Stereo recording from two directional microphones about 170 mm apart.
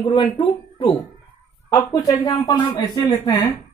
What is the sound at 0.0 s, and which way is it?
Speech, 30° left (ahead or behind).